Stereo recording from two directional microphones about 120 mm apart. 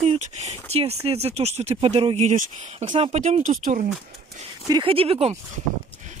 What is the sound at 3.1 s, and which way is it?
Speech, 85° right.